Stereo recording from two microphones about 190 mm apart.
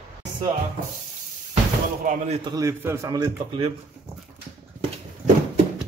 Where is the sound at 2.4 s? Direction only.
15° right (ahead or behind).